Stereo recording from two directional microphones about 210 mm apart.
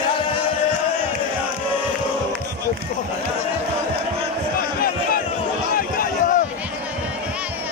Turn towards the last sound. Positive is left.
turn(degrees=40)  # may be behind; listen again after turning